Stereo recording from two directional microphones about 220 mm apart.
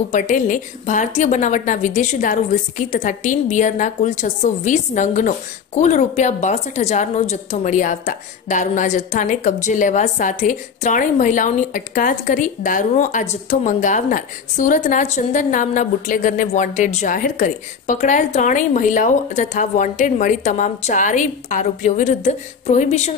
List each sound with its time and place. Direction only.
0.1 s a woman's voice: 35° left (ahead or behind)